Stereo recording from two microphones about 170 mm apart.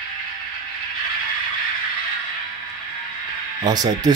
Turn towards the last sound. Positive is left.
turn(degrees=-25)  # may be behind; listen again after turning